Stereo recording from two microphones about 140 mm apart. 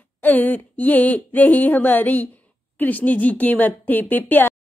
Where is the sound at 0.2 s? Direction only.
15° left (ahead or behind).